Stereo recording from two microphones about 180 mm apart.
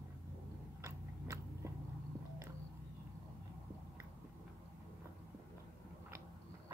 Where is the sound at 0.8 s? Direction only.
15° right (ahead or behind).